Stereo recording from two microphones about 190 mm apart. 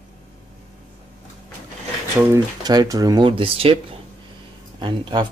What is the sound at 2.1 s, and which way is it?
Speech, 15° right (ahead or behind).